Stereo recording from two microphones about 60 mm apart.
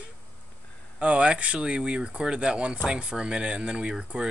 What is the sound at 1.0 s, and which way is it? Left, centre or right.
Speech, centre.